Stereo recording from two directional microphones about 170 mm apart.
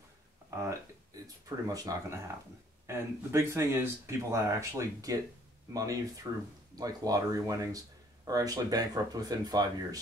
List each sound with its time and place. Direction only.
1.2 s speech: 20° right (ahead or behind)